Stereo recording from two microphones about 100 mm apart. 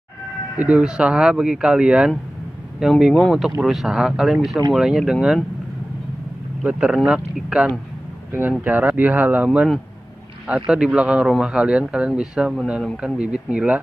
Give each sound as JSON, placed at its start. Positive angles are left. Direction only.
{"t": 0.6, "sound": "speech", "side_deg": -10}
{"t": 6.6, "sound": "speech", "side_deg": -10}
{"t": 10.7, "sound": "speech", "side_deg": -10}